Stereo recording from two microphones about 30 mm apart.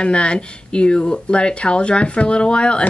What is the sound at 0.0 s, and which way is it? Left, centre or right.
Speech, left.